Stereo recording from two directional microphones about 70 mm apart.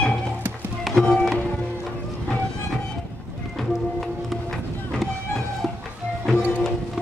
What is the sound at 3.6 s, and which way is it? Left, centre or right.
Music, centre.